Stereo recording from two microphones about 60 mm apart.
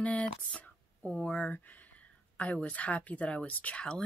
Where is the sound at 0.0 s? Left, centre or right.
Left.